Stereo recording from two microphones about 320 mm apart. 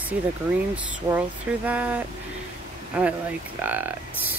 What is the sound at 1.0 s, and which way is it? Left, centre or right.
Speech, centre.